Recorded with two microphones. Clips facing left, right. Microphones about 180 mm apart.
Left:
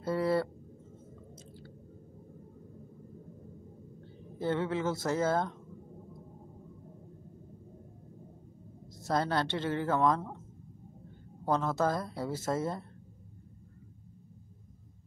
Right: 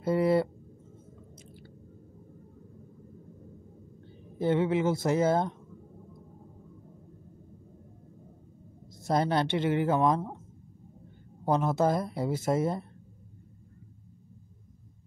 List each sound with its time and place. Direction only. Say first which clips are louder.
0.0 s a sound: right 4 dB; 20° right (ahead or behind)
4.4 s speech: right 5 dB; 15° right (ahead or behind)
9.0 s speech: right 4 dB; 20° right (ahead or behind)
11.4 s speech: right 4 dB; 15° right (ahead or behind)